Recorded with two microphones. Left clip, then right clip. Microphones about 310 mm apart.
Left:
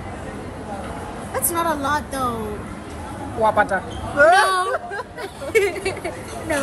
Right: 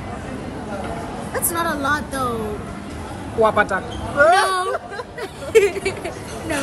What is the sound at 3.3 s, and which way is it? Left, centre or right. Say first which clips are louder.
Speech: right 1 dB; centre.